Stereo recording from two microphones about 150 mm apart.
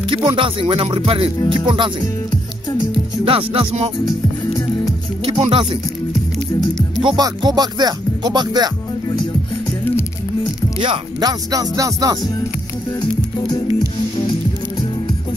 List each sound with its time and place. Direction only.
0.1 s music: 35° right (ahead or behind)
2.9 s music: 40° right (ahead or behind)
5.4 s music: 35° right (ahead or behind)
7.0 s speech: 30° right (ahead or behind)
10.8 s speech: 30° right (ahead or behind)
13.0 s music: 30° left (ahead or behind)